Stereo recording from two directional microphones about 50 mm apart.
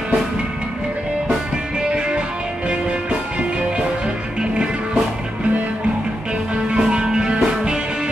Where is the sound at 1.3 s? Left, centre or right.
Centre.